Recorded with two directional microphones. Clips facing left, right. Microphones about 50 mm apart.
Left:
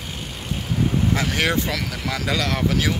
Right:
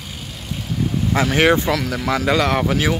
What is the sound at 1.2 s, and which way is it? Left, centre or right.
Speech, right.